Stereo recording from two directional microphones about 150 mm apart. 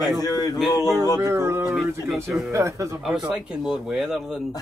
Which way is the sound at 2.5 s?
20° right (ahead or behind).